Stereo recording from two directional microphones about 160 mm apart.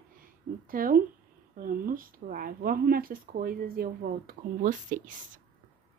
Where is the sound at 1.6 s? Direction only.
60° right (ahead or behind).